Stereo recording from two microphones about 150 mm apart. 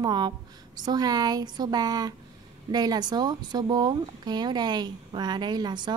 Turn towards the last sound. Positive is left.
turn(degrees=-30)  # may be behind; listen again after turning